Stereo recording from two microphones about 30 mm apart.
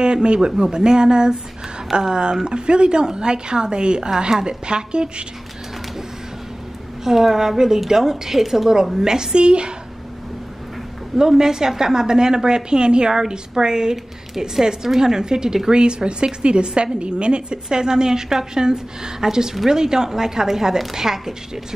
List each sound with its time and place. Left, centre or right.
0.0 s a man's voice: right
7.1 s a woman's voice: centre; by 9.7 s right
11.1 s a woman's voice: centre